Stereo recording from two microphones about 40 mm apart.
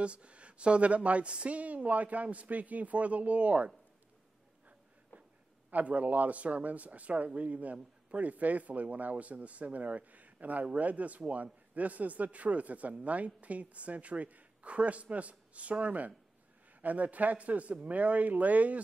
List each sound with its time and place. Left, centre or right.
0.0 s a woman's voice: right
5.7 s a woman's voice: right